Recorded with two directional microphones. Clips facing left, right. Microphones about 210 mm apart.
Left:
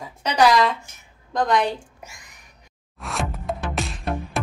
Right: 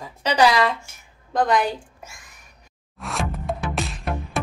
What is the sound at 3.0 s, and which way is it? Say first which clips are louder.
Music: right 1 dB; centre (ahead or behind).